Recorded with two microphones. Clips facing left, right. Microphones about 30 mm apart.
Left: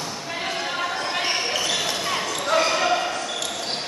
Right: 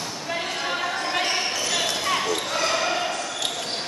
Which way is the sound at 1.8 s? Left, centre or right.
Centre.